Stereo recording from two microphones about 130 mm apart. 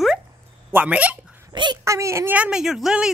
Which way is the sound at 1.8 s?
20° right (ahead or behind).